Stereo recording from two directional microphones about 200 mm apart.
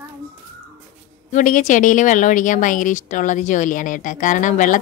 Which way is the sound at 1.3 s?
40° left (ahead or behind).